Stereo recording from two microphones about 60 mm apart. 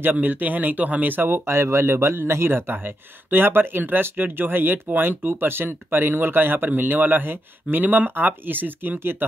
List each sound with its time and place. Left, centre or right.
0.0 s speech: right